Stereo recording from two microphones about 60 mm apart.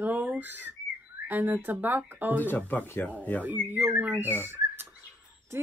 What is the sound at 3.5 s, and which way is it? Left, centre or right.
Speech, right.